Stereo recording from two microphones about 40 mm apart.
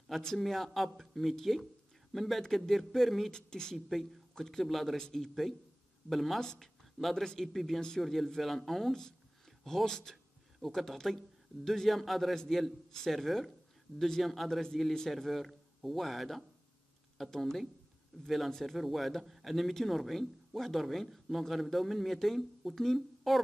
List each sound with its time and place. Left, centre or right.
0.4 s speech: centre
3.3 s speech: centre
3.7 s speech: centre
4.4 s speech: centre
4.6 s speech: centre
4.9 s speech: centre
6.0 s speech: centre
6.4 s speech: centre
6.8 s a sound: centre
7.4 s speech: centre
18.1 s speech: centre
18.5 s speech: centre